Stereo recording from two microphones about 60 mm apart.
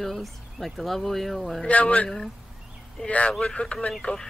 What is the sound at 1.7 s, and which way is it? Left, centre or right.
Speech, left.